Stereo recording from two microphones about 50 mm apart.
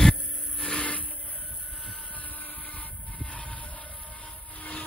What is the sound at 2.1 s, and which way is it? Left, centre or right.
Vehicle, left.